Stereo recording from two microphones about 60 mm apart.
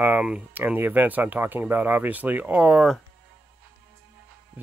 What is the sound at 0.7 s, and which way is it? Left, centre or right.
Speech, right.